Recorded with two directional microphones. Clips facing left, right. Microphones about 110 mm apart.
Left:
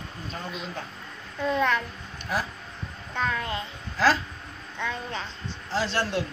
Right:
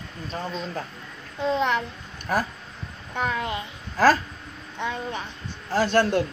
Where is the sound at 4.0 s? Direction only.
45° right (ahead or behind).